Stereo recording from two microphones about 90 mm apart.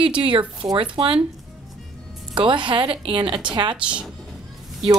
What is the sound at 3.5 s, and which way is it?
Speech, 60° right (ahead or behind).